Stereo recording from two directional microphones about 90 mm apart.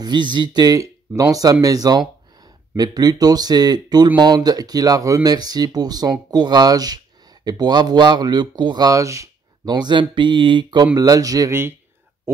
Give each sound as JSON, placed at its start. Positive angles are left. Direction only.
{"t": 0.0, "sound": "speech", "side_deg": -60}
{"t": 9.7, "sound": "speech", "side_deg": -55}
{"t": 11.0, "sound": "speech", "side_deg": -40}